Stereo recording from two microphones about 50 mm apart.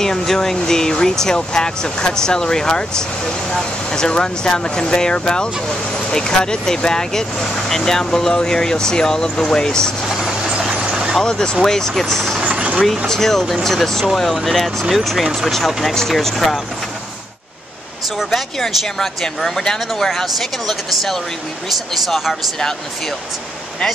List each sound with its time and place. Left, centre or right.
0.0 s speech: centre
10.0 s vehicle: centre
11.2 s speech: centre
12.4 s vehicle: right
12.8 s speech: centre
18.3 s speech: centre